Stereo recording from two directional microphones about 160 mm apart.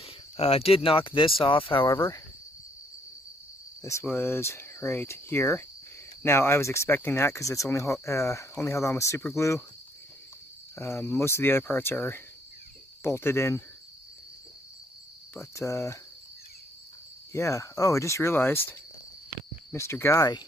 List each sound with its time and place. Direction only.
0.0 s speech: 40° left (ahead or behind)
3.8 s speech: 15° left (ahead or behind)
10.8 s speech: 15° left (ahead or behind)
15.3 s speech: 20° left (ahead or behind)
17.3 s speech: 20° left (ahead or behind)